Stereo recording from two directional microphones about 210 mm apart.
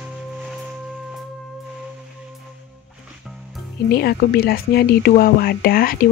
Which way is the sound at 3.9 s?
50° left (ahead or behind).